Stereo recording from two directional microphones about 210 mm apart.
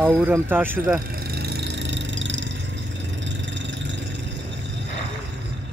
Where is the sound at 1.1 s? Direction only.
50° right (ahead or behind).